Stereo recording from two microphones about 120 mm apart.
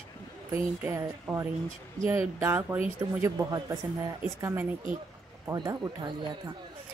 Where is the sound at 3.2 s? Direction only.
30° right (ahead or behind).